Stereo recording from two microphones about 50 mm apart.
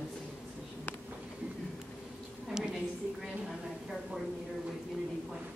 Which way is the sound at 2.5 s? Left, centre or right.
Centre.